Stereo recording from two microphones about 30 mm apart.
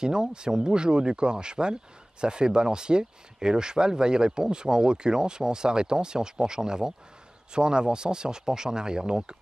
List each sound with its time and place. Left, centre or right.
0.0 s speech: right